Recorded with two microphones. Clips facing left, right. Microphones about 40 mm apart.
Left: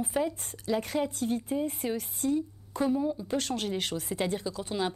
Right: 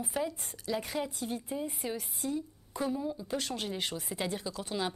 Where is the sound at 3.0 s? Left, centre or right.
Left.